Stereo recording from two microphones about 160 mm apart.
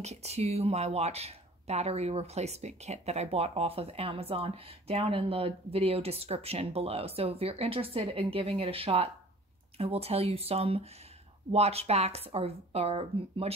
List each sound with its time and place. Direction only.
0.0 s speech: 40° right (ahead or behind)